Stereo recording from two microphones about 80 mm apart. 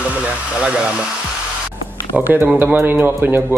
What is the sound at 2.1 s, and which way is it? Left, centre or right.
Speech, centre.